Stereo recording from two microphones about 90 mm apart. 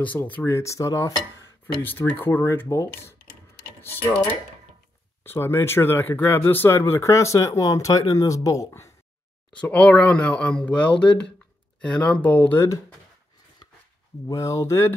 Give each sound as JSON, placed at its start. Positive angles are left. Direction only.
{"t": 0.0, "sound": "speech", "side_deg": 20}
{"t": 0.5, "sound": "speech", "side_deg": 35}
{"t": 1.9, "sound": "speech", "side_deg": 20}
{"t": 5.2, "sound": "speech", "side_deg": 25}
{"t": 9.5, "sound": "speech", "side_deg": 15}
{"t": 12.5, "sound": "speech", "side_deg": 35}
{"t": 14.2, "sound": "speech", "side_deg": 35}